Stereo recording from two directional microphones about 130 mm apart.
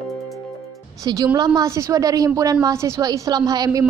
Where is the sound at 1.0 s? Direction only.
25° right (ahead or behind).